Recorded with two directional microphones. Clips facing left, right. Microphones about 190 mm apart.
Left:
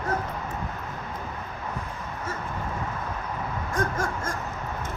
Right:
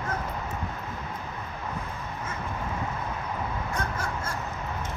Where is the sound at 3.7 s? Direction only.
45° left (ahead or behind).